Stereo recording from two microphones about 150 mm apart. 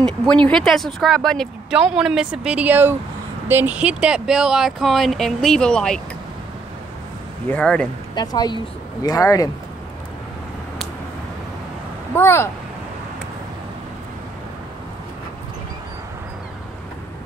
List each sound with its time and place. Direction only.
0.3 s speech: 5° left (ahead or behind)
7.4 s speech: 10° left (ahead or behind)
8.1 s speech: 25° left (ahead or behind)
12.2 s speech: 15° left (ahead or behind)